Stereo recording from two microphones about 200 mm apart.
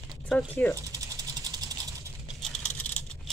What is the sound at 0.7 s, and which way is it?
Ratchet, 15° right (ahead or behind).